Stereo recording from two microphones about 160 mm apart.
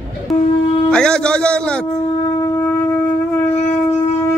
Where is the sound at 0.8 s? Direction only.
5° left (ahead or behind).